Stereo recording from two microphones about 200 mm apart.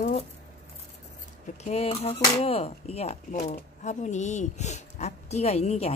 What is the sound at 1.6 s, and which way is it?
Speech, 30° left (ahead or behind).